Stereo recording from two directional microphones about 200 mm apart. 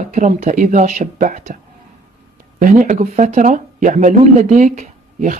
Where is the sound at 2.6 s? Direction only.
40° right (ahead or behind).